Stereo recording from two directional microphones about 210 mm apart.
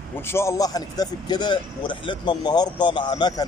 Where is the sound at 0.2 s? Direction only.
10° left (ahead or behind).